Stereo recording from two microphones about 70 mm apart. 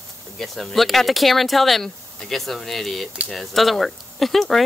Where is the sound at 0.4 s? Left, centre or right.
Centre.